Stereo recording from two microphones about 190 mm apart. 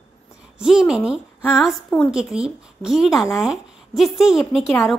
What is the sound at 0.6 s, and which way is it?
A woman's voice, 5° right (ahead or behind).